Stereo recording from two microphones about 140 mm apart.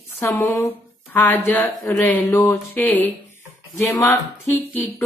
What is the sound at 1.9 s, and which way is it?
Speech, 15° left (ahead or behind).